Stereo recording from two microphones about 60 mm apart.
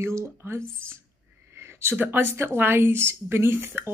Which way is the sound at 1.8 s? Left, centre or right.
Right.